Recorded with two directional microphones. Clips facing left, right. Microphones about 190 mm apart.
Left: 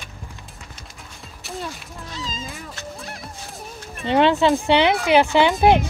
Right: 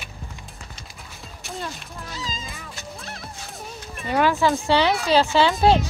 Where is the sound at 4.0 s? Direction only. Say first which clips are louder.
Left 3 dB; 25° left (ahead or behind).